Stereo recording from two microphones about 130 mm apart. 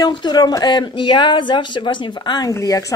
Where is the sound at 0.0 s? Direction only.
35° left (ahead or behind).